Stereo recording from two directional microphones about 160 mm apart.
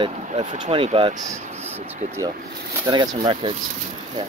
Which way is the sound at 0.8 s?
35° right (ahead or behind).